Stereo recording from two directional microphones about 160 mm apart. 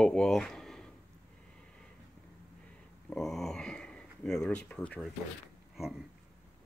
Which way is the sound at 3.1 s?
Centre (ahead or behind).